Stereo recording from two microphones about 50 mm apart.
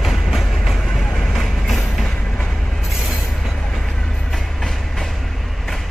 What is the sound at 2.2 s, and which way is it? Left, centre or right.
Train, left.